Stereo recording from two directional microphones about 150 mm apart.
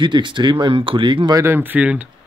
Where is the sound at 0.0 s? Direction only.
30° right (ahead or behind); by 2.0 s 10° right (ahead or behind).